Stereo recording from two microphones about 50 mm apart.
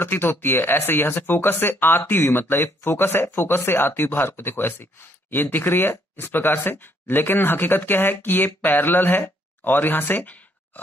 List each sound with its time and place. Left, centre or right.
0.0 s speech: left